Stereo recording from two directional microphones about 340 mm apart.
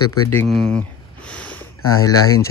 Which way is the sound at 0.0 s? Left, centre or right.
Left.